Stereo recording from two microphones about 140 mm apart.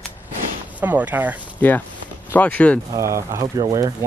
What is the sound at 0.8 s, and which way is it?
Speech, 10° right (ahead or behind).